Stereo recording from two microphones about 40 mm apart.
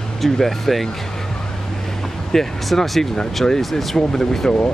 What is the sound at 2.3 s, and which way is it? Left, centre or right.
Speech, centre.